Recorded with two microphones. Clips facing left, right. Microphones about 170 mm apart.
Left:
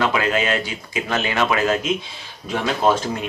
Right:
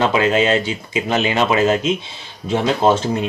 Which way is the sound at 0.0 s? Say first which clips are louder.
Right 5 dB; 25° right (ahead or behind).